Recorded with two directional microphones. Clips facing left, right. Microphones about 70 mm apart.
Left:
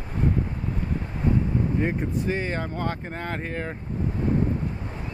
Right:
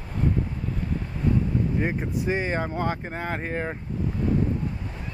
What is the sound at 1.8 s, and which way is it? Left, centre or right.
Speech, centre.